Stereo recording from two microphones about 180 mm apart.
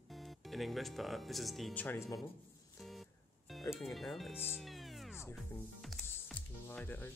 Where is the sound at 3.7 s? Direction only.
Centre (ahead or behind).